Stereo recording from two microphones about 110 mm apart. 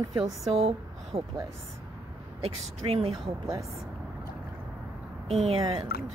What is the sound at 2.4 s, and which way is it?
Speech, 65° right (ahead or behind).